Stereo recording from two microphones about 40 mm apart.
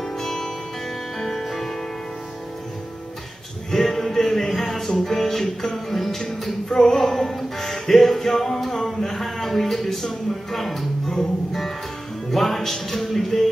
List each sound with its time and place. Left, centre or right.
0.0 s music: centre
3.7 s music: centre